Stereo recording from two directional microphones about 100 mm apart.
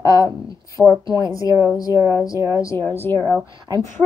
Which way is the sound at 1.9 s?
30° right (ahead or behind).